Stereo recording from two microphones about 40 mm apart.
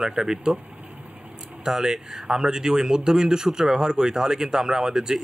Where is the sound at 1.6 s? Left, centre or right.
Centre.